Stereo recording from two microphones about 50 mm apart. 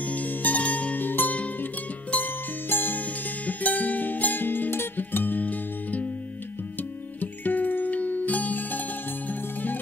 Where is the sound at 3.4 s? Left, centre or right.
Left.